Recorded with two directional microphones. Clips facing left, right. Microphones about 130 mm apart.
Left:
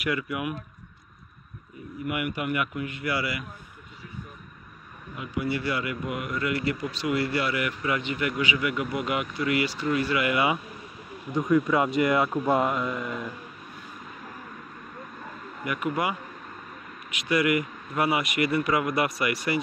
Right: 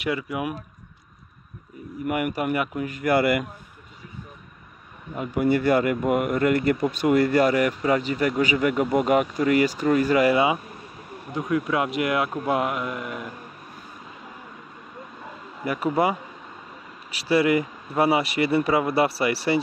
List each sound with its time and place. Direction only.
0.0 s speech: 30° right (ahead or behind)
2.0 s speech: 40° right (ahead or behind)
5.1 s speech: 45° right (ahead or behind)
11.3 s speech: centre (ahead or behind)
15.6 s speech: 35° right (ahead or behind)